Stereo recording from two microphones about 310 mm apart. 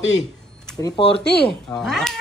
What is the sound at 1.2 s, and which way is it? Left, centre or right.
Speech, left.